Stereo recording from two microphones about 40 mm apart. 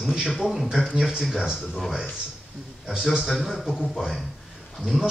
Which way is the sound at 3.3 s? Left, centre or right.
Centre.